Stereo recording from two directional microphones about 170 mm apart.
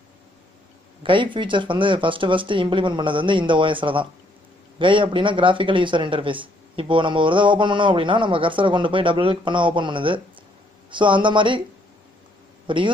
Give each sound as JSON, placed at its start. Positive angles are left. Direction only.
{"t": 1.0, "sound": "speech", "side_deg": -30}
{"t": 12.6, "sound": "a man's voice", "side_deg": -30}